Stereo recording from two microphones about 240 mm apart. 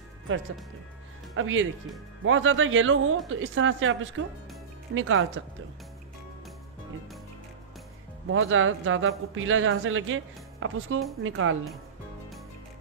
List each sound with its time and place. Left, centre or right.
1.3 s a man's voice: right
8.3 s a man's voice: right